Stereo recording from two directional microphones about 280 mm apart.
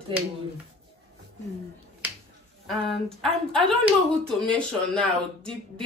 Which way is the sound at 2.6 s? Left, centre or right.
Centre.